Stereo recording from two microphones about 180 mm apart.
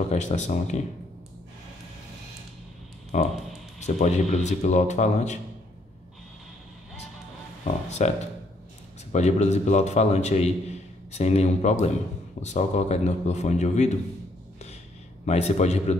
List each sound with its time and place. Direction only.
0.1 s speech: 40° left (ahead or behind)
3.1 s speech: 40° left (ahead or behind)
7.6 s speech: 40° left (ahead or behind)
9.1 s speech: 40° left (ahead or behind)
15.2 s speech: 35° left (ahead or behind)